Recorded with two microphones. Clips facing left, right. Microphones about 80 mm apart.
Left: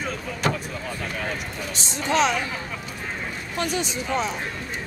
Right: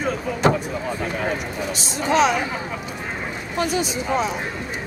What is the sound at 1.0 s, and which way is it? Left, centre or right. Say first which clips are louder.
Run: right 4 dB; centre.